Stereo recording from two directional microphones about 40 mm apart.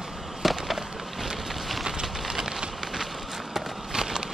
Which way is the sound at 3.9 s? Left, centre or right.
Centre.